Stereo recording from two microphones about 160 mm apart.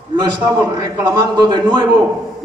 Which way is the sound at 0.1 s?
25° right (ahead or behind).